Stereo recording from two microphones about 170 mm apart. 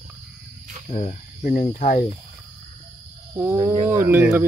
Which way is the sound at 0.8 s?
45° left (ahead or behind).